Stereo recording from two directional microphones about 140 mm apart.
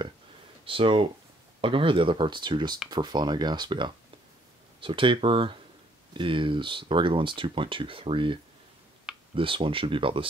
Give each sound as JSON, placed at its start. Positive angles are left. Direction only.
{"t": 0.7, "sound": "speech", "side_deg": -40}